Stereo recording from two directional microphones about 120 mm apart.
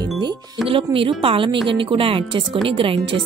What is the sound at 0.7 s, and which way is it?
Speech, 50° right (ahead or behind).